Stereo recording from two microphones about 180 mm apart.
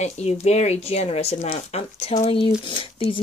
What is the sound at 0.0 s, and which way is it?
Speech, 40° left (ahead or behind).